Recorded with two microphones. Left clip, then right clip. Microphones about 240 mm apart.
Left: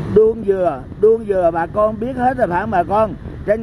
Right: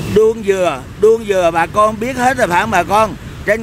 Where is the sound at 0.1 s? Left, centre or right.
Centre.